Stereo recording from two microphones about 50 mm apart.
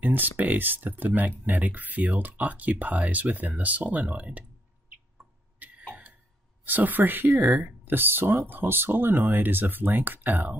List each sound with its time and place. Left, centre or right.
0.0 s speech: right
5.6 s a sound: right
6.6 s speech: right